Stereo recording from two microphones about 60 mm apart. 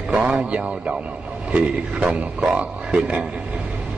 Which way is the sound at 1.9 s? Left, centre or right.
Right.